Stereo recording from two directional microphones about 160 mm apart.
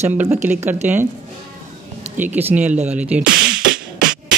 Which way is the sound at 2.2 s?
10° right (ahead or behind).